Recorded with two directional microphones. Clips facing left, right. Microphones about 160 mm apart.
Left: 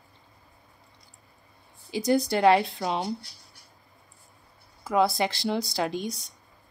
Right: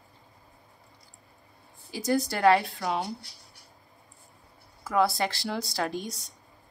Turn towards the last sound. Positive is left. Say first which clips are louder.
# left 2 dB
turn(degrees=15)  # may be behind; listen again after turning